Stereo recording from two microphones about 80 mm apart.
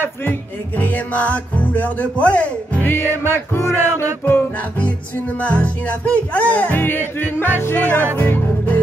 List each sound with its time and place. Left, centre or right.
0.0 s music: left
8.2 s speech: left